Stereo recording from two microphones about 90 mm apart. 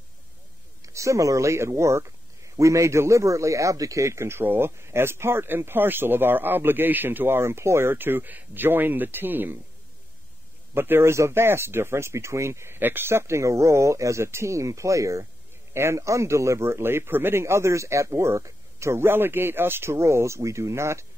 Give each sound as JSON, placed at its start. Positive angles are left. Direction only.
{"t": 0.8, "sound": "speech", "side_deg": -35}
{"t": 10.7, "sound": "a man's voice", "side_deg": -25}